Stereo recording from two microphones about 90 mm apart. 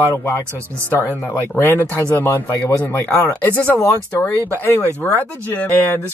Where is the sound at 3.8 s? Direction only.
35° left (ahead or behind).